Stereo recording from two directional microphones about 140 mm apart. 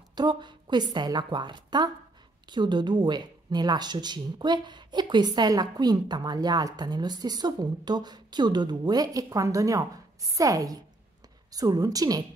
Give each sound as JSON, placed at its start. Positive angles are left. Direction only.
{"t": 0.1, "sound": "a woman's voice", "side_deg": -30}